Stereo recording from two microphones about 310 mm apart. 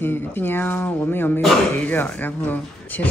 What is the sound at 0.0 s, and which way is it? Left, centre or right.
Speech, centre.